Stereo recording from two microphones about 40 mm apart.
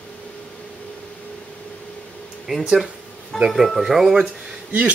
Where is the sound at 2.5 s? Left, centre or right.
Right.